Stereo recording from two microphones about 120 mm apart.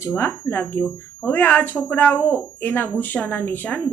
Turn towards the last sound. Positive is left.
turn(degrees=15)  # may be behind; listen again after turning